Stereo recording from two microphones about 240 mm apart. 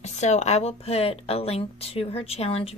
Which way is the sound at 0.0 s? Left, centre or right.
Left.